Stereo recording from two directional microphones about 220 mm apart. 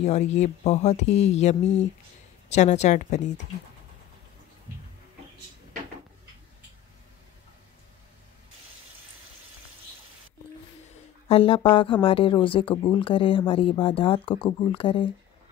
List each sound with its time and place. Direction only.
0.0 s speech: 30° left (ahead or behind)
11.2 s speech: 25° left (ahead or behind)